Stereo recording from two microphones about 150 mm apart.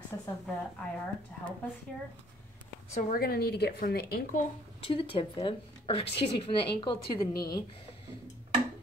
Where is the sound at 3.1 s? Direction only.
90° left.